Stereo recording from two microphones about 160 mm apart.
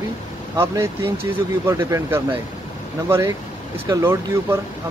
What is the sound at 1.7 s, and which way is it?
Speech, 15° right (ahead or behind).